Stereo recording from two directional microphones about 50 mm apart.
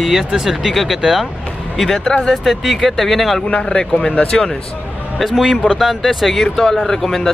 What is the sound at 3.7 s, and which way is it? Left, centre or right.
Speech, centre.